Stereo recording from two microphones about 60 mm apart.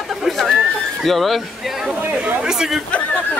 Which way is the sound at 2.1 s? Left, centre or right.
Centre.